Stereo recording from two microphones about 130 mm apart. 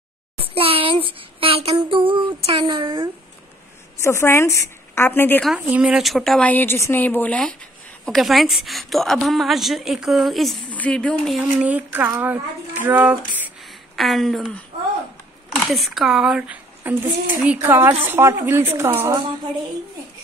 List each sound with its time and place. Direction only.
0.6 s child singing: 45° right (ahead or behind)
4.0 s a woman's voice: 20° left (ahead or behind)
5.7 s a woman's voice: 10° right (ahead or behind)
6.5 s a woman's voice: 15° left (ahead or behind)
11.6 s a woman's voice: 10° right (ahead or behind)
13.7 s a sound: centre (ahead or behind)
15.5 s a woman's voice: centre (ahead or behind); by 19.1 s 20° right (ahead or behind)